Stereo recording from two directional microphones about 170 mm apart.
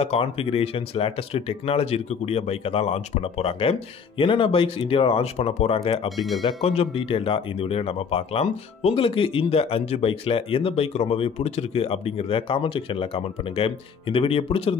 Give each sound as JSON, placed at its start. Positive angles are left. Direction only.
{"t": 0.0, "sound": "speech", "side_deg": 35}
{"t": 6.0, "sound": "speech", "side_deg": 0}
{"t": 6.4, "sound": "speech", "side_deg": 35}